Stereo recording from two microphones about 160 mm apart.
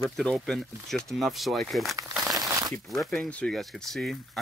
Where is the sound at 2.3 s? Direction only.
25° right (ahead or behind).